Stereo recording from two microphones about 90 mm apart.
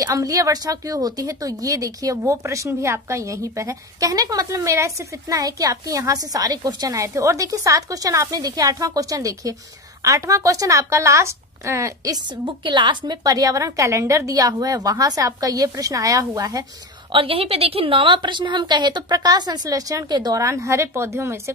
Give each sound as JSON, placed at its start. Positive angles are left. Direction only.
{"t": 0.0, "sound": "a woman's voice", "side_deg": -40}
{"t": 17.1, "sound": "a woman's voice", "side_deg": -80}